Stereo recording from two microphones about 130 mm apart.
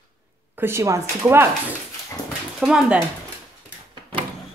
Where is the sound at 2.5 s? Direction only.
5° right (ahead or behind).